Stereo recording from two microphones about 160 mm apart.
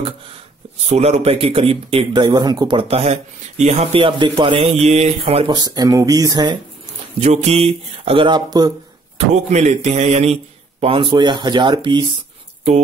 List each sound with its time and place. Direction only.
0.7 s speech: 40° right (ahead or behind); by 6.6 s 25° right (ahead or behind)
7.2 s speech: 45° right (ahead or behind); by 8.7 s 25° right (ahead or behind)
9.3 s speech: 45° right (ahead or behind); by 12.1 s 25° right (ahead or behind)